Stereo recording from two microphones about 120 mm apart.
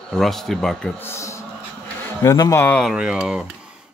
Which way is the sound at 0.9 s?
20° left (ahead or behind).